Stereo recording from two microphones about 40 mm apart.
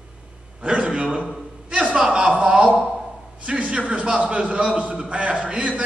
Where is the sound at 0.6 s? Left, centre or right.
Right.